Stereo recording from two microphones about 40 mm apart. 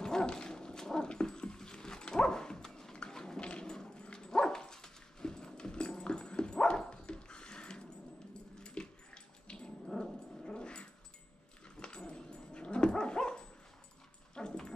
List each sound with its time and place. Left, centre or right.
0.0 s dog: centre